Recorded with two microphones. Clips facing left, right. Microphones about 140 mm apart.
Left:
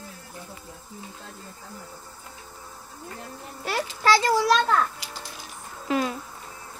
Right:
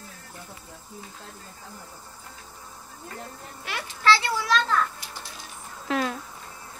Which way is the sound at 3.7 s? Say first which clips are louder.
Left 1 dB; 40° left (ahead or behind).